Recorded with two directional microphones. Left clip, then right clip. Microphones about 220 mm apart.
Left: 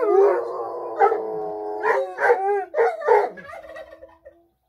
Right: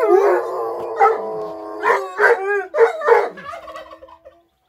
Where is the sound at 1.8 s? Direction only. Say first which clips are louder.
Right 6 dB; 35° right (ahead or behind).